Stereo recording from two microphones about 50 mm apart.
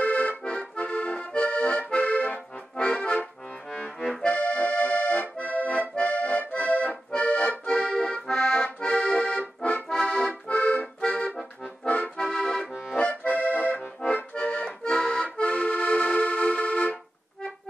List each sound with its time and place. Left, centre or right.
0.0 s accordion: left
2.9 s accordion: centre
4.2 s accordion: left
7.6 s accordion: centre
8.3 s accordion: centre
12.9 s accordion: left
14.8 s accordion: centre
15.3 s accordion: left